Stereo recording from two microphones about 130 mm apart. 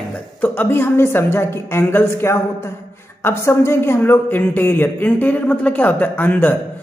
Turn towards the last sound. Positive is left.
turn(degrees=15)  # may be behind; listen again after turning